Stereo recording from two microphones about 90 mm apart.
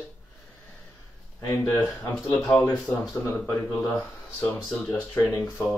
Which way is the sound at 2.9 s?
30° left (ahead or behind).